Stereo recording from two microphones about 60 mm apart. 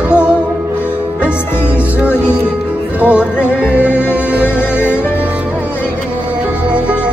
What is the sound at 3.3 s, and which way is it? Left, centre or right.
Music, left.